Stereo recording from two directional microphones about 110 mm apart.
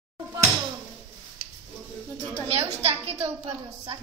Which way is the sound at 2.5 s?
65° right (ahead or behind).